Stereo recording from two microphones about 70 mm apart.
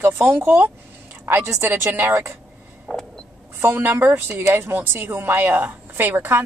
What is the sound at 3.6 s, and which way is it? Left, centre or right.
A woman's voice, right.